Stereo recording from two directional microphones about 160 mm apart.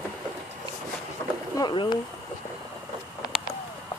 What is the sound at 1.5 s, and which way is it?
Speech, 25° left (ahead or behind).